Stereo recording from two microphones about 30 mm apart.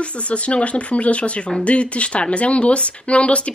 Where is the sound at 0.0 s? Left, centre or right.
Left.